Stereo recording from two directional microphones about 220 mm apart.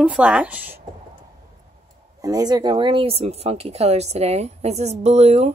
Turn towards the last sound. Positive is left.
turn(degrees=-30)  # may be behind; listen again after turning